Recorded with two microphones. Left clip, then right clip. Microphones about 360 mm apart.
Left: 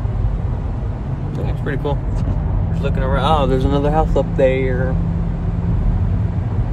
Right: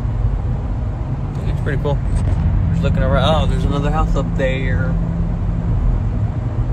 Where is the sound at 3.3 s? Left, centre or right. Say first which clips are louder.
Left 3 dB; left.